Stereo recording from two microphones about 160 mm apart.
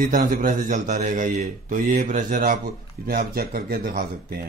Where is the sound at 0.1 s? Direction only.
55° right (ahead or behind).